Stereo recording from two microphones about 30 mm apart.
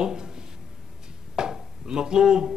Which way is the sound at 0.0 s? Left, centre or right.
Right.